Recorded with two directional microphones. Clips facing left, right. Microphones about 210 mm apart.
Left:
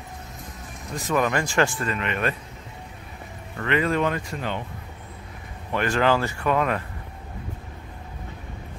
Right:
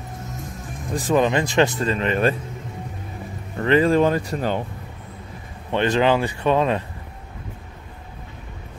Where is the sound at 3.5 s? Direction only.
30° right (ahead or behind).